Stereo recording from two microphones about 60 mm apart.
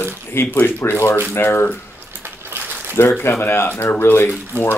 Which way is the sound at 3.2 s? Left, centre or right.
Left.